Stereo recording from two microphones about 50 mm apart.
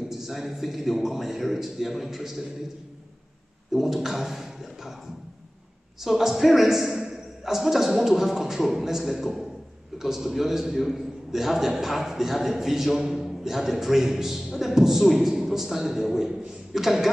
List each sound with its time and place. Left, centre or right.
0.1 s a man's voice: centre
3.7 s speech: centre
6.0 s a man's voice: centre